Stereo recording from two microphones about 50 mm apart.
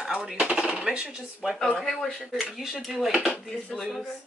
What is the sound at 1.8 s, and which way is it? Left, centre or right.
Speech, centre.